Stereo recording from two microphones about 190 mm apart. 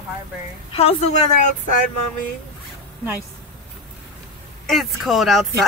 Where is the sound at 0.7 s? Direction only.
30° left (ahead or behind).